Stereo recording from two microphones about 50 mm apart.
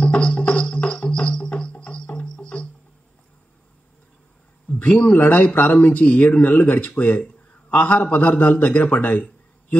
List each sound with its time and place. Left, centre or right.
0.0 s music: left
4.7 s a man's voice: left